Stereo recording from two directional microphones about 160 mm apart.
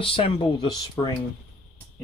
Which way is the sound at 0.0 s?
35° left (ahead or behind).